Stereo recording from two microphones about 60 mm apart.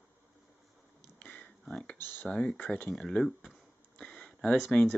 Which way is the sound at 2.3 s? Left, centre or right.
Centre.